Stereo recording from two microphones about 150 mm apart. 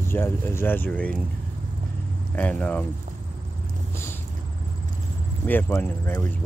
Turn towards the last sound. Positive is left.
turn(degrees=15)  # may be behind; listen again after turning